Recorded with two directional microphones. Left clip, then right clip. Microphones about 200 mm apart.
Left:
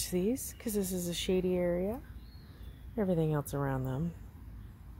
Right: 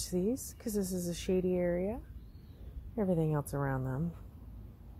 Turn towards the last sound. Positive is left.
turn(degrees=10)  # may be behind; listen again after turning